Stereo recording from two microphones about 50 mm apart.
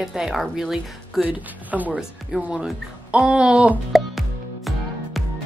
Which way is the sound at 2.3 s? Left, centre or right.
Centre.